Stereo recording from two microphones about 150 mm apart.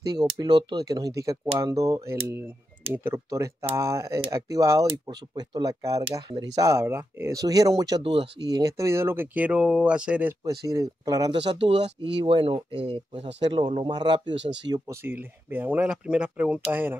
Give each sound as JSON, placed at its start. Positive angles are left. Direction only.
{"t": 0.0, "sound": "speech", "side_deg": -25}
{"t": 4.8, "sound": "speech", "side_deg": -30}
{"t": 8.5, "sound": "speech", "side_deg": -25}
{"t": 10.4, "sound": "speech", "side_deg": -25}
{"t": 14.9, "sound": "speech", "side_deg": -15}